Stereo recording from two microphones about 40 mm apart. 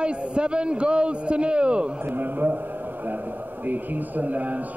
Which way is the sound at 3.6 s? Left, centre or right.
Right.